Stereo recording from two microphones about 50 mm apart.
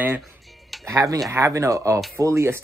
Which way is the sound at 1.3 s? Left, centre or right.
Right.